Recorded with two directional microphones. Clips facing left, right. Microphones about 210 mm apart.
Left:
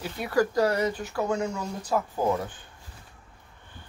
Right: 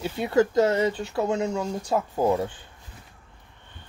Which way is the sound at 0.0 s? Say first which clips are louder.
Right 3 dB; 25° right (ahead or behind).